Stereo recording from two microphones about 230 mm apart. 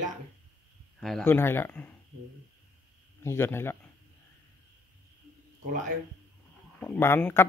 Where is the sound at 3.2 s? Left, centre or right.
Centre.